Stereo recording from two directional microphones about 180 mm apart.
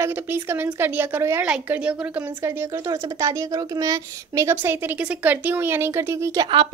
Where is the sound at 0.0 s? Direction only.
10° right (ahead or behind).